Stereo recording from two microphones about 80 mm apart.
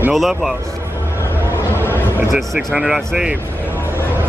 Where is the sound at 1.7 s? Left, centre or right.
Left.